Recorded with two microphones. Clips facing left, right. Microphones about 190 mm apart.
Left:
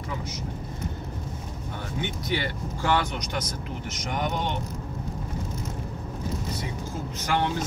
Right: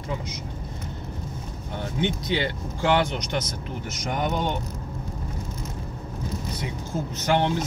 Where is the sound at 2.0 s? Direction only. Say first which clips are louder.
Right 4 dB; 20° right (ahead or behind).